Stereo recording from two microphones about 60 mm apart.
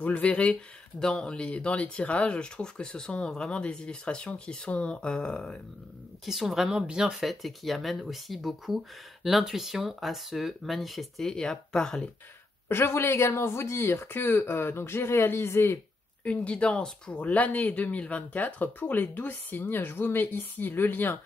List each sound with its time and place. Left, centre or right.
0.0 s speech: left
6.2 s speech: centre
12.6 s speech: left
16.3 s speech: left